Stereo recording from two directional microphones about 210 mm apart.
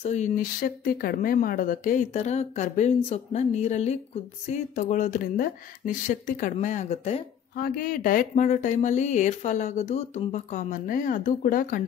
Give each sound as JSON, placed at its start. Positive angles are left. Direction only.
{"t": 0.0, "sound": "speech", "side_deg": 35}
{"t": 7.5, "sound": "speech", "side_deg": 45}